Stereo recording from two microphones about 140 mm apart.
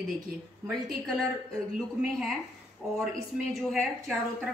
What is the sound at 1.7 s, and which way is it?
A woman's voice, centre (ahead or behind).